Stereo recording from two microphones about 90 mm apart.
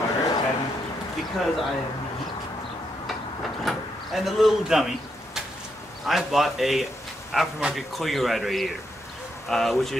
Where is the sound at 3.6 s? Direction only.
Centre (ahead or behind).